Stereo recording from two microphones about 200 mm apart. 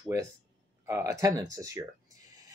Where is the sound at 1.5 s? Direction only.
15° right (ahead or behind).